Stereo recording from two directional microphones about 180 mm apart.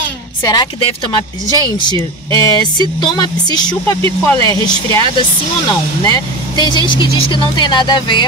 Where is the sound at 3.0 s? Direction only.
25° left (ahead or behind).